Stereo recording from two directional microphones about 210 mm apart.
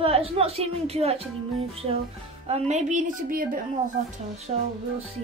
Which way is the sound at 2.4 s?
30° right (ahead or behind).